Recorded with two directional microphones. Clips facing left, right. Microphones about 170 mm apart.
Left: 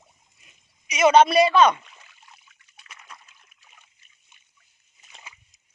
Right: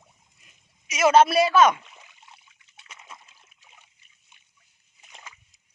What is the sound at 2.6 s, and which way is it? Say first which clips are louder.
Splash: right 1 dB; 25° right (ahead or behind).